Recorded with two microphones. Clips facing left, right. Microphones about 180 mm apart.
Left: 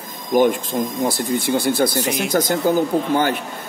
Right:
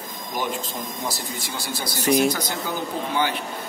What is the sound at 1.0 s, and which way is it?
Speech, 55° left (ahead or behind).